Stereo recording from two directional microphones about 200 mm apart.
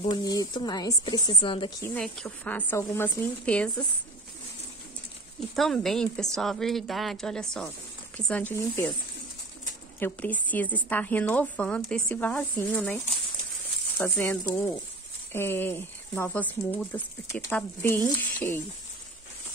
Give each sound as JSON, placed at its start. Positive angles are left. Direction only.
{"t": 0.0, "sound": "a woman's voice", "side_deg": 20}
{"t": 2.0, "sound": "speech", "side_deg": 5}
{"t": 5.6, "sound": "a woman's voice", "side_deg": 0}
{"t": 9.9, "sound": "speech", "side_deg": 10}